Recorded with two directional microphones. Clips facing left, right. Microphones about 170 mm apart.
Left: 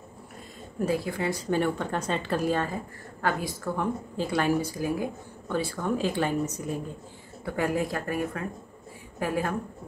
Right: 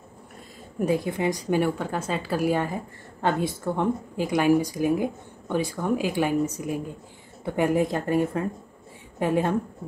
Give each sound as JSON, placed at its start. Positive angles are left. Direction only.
{"t": 0.7, "sound": "a woman's voice", "side_deg": -20}